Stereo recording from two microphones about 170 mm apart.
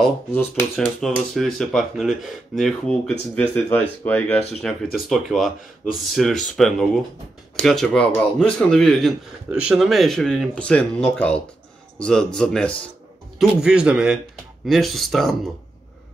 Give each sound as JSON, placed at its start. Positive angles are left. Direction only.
{"t": 0.0, "sound": "speech", "side_deg": 5}